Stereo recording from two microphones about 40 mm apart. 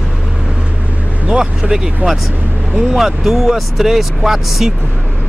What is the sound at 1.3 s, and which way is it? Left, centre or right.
Speech, centre.